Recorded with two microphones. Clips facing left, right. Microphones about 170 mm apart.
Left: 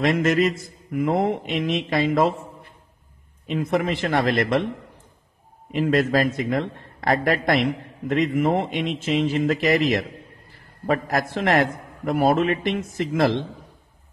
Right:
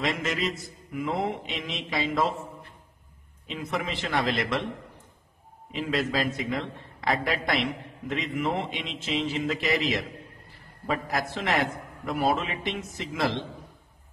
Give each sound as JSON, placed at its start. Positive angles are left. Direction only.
{"t": 0.0, "sound": "a man's voice", "side_deg": 50}
{"t": 3.4, "sound": "a man's voice", "side_deg": 50}
{"t": 5.7, "sound": "a man's voice", "side_deg": 50}